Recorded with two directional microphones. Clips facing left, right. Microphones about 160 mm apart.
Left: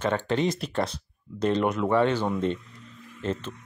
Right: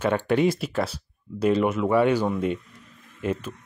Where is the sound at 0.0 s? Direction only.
10° right (ahead or behind).